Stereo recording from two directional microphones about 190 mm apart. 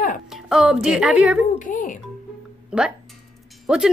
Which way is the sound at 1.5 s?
45° left (ahead or behind).